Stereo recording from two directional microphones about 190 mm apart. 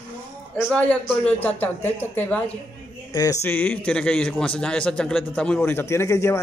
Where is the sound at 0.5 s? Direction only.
5° left (ahead or behind).